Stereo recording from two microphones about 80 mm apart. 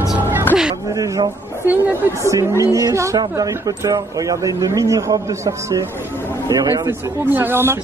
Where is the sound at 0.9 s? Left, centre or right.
Right.